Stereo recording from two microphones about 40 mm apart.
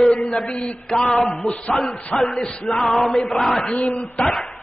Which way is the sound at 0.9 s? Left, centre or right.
Left.